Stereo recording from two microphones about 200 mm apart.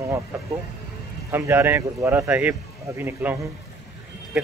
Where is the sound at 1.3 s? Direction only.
10° right (ahead or behind).